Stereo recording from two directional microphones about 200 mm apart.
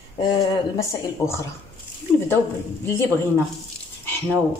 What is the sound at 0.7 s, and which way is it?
Speech, 15° left (ahead or behind).